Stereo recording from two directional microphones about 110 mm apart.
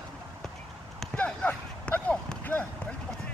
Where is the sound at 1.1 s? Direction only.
10° left (ahead or behind).